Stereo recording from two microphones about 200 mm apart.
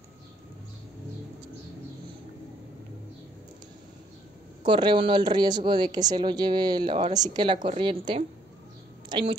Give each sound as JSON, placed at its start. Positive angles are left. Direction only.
{"t": 4.6, "sound": "speech", "side_deg": -25}